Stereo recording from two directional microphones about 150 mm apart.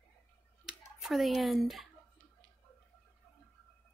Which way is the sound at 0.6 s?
Centre (ahead or behind).